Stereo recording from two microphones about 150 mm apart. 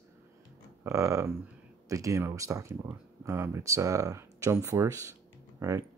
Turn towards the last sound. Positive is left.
turn(degrees=-15)  # may be behind; listen again after turning